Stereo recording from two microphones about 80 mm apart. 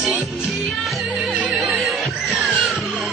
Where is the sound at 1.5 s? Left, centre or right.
Centre.